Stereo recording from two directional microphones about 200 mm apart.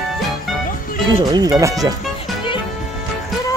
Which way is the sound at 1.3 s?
20° right (ahead or behind).